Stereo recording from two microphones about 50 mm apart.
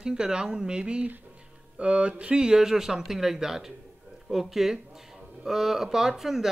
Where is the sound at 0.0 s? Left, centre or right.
Centre.